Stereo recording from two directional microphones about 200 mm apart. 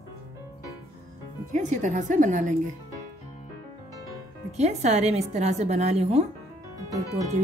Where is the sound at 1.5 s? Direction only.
40° right (ahead or behind).